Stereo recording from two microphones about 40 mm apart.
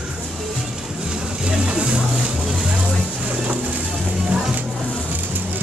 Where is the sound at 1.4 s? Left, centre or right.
Right.